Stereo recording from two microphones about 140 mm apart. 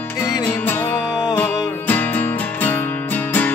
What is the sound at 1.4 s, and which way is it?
Music, 10° left (ahead or behind).